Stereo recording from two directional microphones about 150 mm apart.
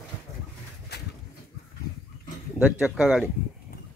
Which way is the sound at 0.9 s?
90° left.